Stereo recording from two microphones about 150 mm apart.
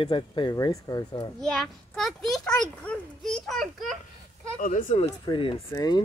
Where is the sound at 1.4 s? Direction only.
5° left (ahead or behind).